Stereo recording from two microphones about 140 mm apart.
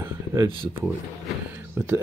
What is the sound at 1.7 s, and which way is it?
Whispering, 15° right (ahead or behind).